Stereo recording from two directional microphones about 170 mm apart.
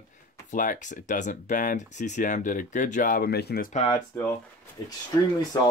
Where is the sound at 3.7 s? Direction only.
40° left (ahead or behind).